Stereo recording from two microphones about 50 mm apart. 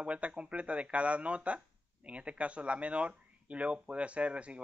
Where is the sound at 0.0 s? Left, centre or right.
Right.